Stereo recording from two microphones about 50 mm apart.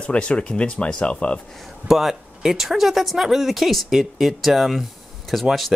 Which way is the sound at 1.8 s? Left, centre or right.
Centre.